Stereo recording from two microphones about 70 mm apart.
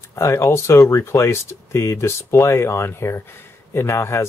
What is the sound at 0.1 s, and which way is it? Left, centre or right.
Speech, left.